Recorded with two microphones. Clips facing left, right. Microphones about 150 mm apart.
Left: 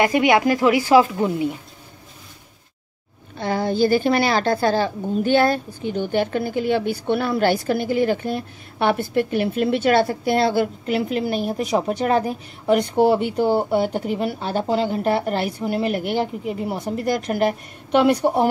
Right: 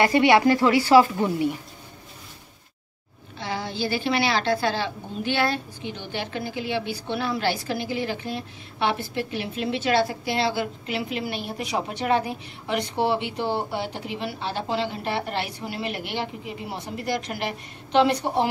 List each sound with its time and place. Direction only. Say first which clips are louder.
0.0 s speech: left 1 dB; 15° left (ahead or behind)
3.3 s a woman's voice: left 9 dB; 50° left (ahead or behind)